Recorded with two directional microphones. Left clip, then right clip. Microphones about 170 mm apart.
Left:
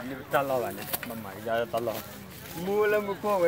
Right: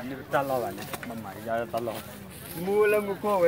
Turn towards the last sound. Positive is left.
turn(degrees=-15)  # may be behind; listen again after turning